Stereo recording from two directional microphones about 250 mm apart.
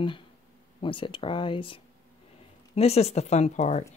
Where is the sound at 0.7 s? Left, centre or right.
Left.